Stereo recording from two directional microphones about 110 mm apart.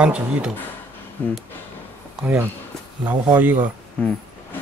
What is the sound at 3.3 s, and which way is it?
Speech, 15° right (ahead or behind).